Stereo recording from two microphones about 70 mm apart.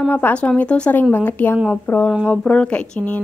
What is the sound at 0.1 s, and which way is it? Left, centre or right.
Speech, left.